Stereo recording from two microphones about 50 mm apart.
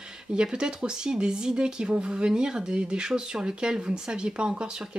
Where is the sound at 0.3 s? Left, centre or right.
Centre.